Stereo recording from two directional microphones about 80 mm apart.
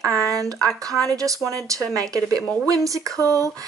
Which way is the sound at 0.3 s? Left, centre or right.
Right.